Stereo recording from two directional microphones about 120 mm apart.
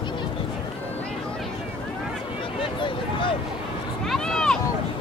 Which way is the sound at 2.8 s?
45° left (ahead or behind).